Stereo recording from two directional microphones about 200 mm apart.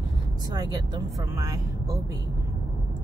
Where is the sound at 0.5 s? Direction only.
20° right (ahead or behind).